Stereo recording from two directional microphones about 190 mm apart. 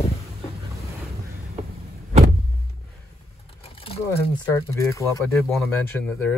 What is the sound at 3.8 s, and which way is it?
Speech, 30° left (ahead or behind).